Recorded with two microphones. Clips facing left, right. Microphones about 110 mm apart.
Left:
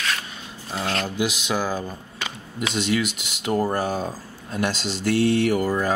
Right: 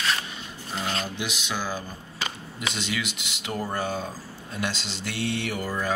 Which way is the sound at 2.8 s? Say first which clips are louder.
Left 10 dB; 45° left (ahead or behind).